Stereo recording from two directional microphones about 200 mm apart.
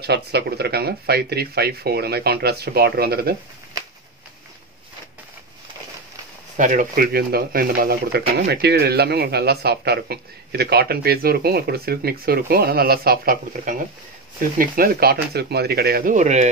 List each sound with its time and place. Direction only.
0.0 s speech: 55° right (ahead or behind)
6.5 s speech: 40° right (ahead or behind)